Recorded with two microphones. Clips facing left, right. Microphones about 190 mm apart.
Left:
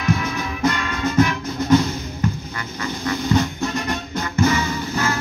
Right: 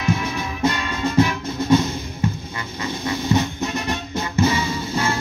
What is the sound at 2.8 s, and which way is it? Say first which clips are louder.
Music: left 1 dB; 25° right (ahead or behind).